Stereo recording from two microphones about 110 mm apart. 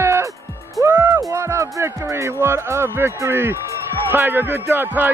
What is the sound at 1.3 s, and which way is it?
Speech, 25° right (ahead or behind).